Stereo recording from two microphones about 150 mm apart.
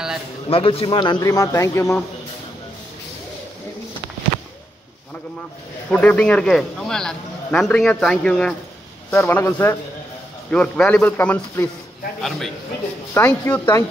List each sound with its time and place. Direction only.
0.5 s a man's voice: 40° left (ahead or behind); by 2.0 s 20° left (ahead or behind)
5.9 s a man's voice: 10° left (ahead or behind)
12.2 s a man's voice: centre (ahead or behind)
13.1 s a man's voice: 10° left (ahead or behind)